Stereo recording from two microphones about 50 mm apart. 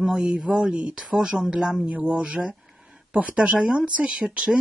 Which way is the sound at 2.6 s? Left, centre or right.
Centre.